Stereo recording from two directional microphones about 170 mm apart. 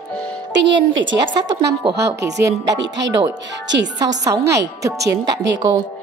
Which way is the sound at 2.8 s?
90° right.